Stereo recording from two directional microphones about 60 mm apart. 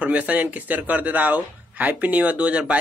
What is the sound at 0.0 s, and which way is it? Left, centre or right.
Speech, right.